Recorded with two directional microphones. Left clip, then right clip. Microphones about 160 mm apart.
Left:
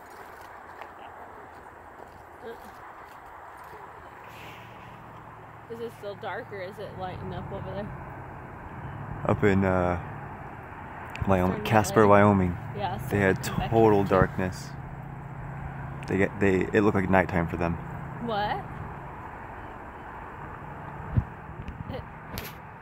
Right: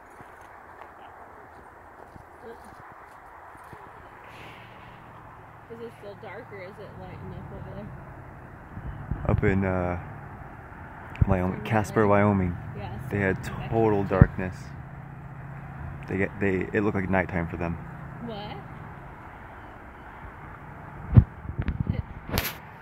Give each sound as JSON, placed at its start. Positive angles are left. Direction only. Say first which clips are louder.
{"t": 6.0, "sound": "speech", "louder": "left 5 dB", "side_deg": 70}
{"t": 7.2, "sound": "speech", "louder": "left 6 dB", "side_deg": 0}
{"t": 9.2, "sound": "speech", "louder": "left 2 dB", "side_deg": 0}
{"t": 11.1, "sound": "speech", "louder": "left 3 dB", "side_deg": 0}
{"t": 16.0, "sound": "speech", "louder": "left 3 dB", "side_deg": 0}
{"t": 18.3, "sound": "a sound", "louder": "left 11 dB", "side_deg": 70}
{"t": 21.1, "sound": "a sound", "louder": "right 12 dB", "side_deg": 0}
{"t": 22.3, "sound": "whip", "louder": "right 10 dB", "side_deg": 0}